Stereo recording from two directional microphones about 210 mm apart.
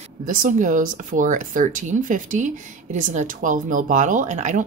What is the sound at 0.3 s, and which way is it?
Speech, 40° right (ahead or behind).